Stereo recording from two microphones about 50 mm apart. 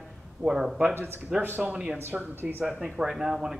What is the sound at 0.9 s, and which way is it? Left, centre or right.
Speech, right.